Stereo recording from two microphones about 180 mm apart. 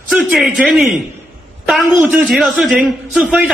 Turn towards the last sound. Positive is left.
turn(degrees=-5)  # may be behind; listen again after turning